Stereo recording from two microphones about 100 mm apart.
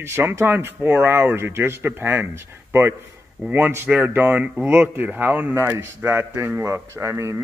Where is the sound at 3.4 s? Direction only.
20° right (ahead or behind).